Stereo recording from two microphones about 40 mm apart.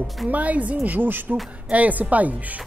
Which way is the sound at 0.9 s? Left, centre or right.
Right.